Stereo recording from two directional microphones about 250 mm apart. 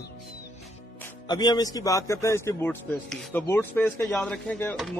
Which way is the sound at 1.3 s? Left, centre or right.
Centre.